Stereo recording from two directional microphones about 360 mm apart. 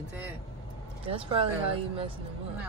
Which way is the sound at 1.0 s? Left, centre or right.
Centre.